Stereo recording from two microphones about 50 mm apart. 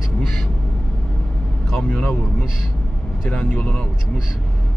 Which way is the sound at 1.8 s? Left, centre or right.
Left.